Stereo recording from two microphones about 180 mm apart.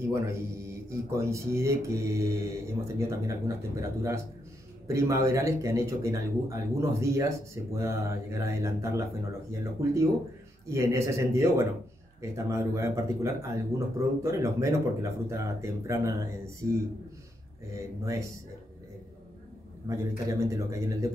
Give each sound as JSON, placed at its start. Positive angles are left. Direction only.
{"t": 0.1, "sound": "speech", "side_deg": -15}
{"t": 19.9, "sound": "a man's voice", "side_deg": -20}